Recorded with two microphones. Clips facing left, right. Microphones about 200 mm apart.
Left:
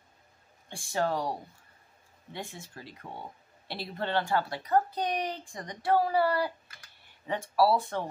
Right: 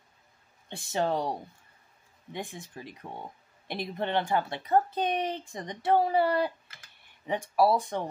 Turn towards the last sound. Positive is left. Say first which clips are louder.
# right 1 dB
turn(degrees=-15)  # may be behind; listen again after turning